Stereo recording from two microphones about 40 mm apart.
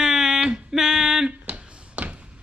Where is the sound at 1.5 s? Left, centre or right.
Right.